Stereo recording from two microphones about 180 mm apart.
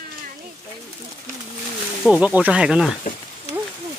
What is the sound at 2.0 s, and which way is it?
Speech, 5° right (ahead or behind).